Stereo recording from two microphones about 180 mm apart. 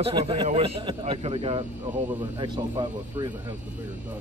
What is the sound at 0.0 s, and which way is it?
A man's voice, 30° right (ahead or behind).